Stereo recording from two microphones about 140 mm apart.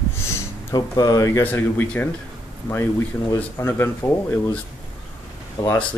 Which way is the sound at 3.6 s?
15° left (ahead or behind).